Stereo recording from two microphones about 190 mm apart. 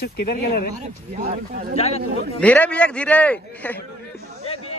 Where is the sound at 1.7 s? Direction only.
35° left (ahead or behind).